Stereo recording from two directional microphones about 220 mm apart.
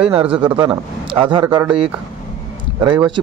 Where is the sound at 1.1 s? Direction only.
25° right (ahead or behind).